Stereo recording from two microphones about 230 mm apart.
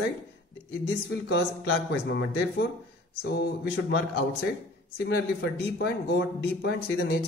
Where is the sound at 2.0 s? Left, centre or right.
Left.